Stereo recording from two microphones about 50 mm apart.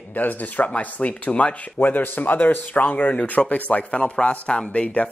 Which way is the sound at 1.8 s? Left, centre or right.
Left.